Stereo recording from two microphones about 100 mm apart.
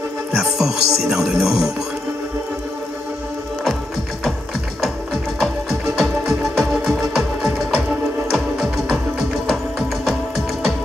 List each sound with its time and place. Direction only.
0.4 s music: 5° right (ahead or behind)
5.4 s music: centre (ahead or behind)